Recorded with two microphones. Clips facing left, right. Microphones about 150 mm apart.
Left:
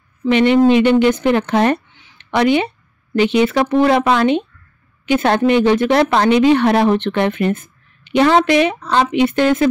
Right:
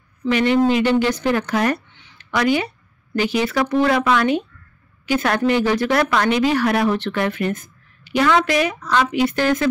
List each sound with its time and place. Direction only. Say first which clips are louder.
0.3 s speech: left 5 dB; 20° left (ahead or behind)